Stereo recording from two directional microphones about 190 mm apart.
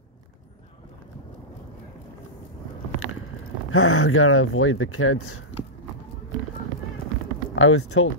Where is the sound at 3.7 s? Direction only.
90° left.